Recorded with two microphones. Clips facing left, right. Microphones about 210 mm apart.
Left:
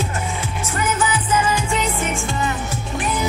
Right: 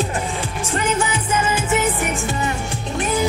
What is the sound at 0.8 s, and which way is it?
Music, 30° right (ahead or behind).